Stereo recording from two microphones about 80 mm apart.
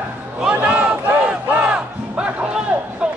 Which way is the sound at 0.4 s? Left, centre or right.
Centre.